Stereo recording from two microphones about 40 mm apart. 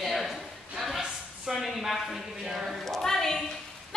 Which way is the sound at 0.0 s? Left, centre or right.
Centre.